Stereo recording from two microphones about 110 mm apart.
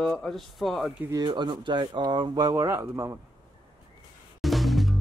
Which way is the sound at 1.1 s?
40° right (ahead or behind).